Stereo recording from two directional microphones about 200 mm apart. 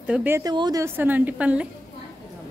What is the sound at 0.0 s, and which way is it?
A woman's voice, 5° right (ahead or behind).